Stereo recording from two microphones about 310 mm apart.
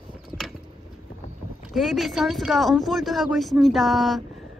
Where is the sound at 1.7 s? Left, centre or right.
Centre.